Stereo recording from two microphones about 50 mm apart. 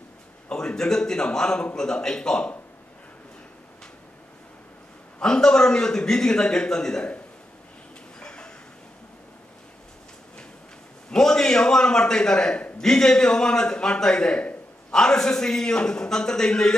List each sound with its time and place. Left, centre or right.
0.5 s a man's voice: centre
5.2 s a man's voice: centre
8.2 s a sound: centre
11.1 s a man's voice: centre